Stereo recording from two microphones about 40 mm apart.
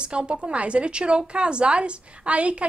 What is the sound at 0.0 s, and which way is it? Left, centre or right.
A woman's voice, right.